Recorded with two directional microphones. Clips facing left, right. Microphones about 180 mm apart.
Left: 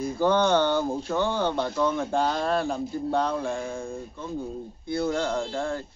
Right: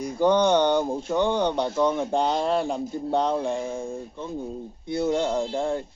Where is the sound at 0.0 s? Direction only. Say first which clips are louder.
Right 2 dB; 20° right (ahead or behind).